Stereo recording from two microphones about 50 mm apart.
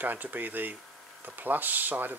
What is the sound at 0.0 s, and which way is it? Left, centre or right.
Speech, right.